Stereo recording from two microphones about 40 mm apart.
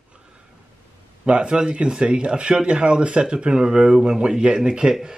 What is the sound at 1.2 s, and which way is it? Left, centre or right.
Speech, right.